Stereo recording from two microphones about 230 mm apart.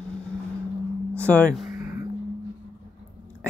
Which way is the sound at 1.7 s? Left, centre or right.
Centre.